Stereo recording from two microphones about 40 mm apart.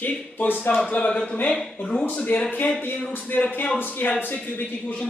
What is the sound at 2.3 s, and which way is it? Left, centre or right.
Speech, left.